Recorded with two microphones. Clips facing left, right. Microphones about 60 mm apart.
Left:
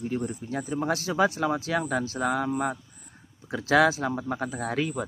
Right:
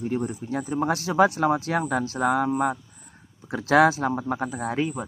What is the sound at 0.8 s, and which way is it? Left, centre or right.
Speech, right.